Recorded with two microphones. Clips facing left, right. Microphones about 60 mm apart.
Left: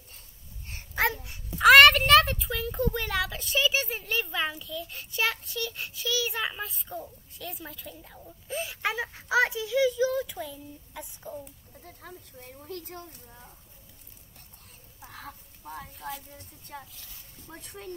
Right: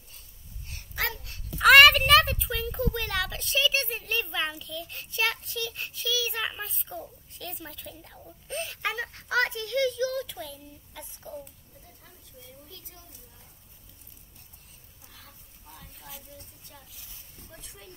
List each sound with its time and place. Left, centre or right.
0.7 s babbling: left
1.6 s a child's voice: centre
11.8 s speech: left
15.0 s a sound: left
16.7 s speech: left